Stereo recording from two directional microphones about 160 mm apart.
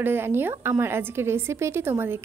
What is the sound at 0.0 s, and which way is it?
A woman's voice, 15° right (ahead or behind).